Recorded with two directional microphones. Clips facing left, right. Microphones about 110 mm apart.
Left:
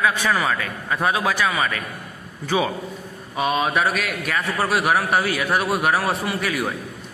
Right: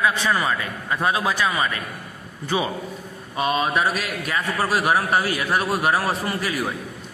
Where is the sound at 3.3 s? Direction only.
5° left (ahead or behind).